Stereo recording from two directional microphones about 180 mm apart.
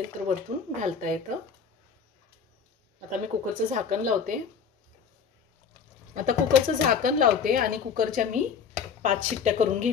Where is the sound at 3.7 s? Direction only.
45° right (ahead or behind).